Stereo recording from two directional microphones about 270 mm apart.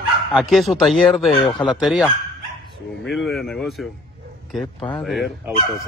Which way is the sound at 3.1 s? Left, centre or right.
Centre.